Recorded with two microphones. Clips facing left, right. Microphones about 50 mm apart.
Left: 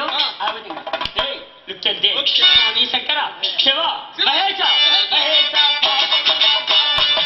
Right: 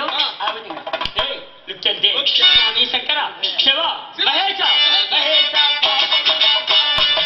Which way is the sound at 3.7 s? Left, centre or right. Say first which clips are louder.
Even; centre.